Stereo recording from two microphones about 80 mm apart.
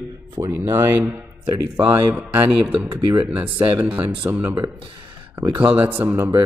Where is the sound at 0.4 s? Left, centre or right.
Right.